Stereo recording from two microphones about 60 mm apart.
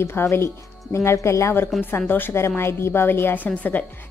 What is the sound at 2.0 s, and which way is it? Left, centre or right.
Speech, left.